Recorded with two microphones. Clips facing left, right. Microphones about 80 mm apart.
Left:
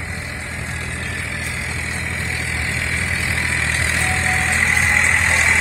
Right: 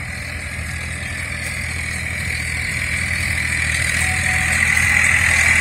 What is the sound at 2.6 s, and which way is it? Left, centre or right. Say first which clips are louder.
Vehicle: left 1 dB; left.